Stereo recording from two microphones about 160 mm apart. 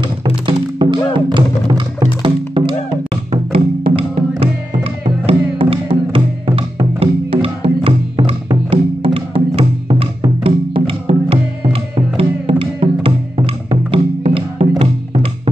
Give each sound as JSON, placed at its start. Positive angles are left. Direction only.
{"t": 0.0, "sound": "music", "side_deg": -30}